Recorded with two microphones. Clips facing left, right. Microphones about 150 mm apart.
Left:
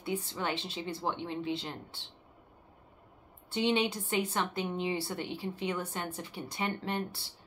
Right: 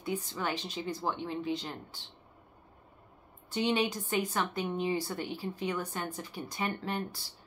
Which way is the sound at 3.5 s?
25° left (ahead or behind).